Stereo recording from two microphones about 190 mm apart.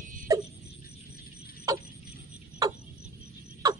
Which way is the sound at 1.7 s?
15° right (ahead or behind).